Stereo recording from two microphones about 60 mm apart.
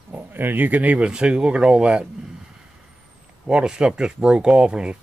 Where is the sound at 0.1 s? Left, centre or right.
Right; by 2.0 s centre.